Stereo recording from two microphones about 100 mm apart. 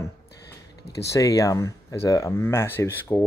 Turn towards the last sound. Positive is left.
turn(degrees=20)  # may be behind; listen again after turning